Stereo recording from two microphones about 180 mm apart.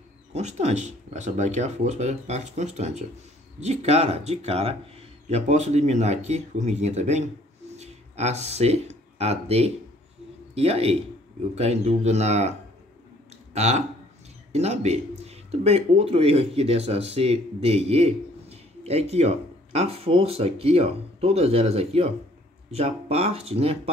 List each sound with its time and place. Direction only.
0.3 s speech: 40° right (ahead or behind)